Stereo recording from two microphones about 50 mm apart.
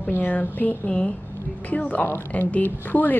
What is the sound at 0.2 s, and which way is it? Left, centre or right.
A woman's voice, left.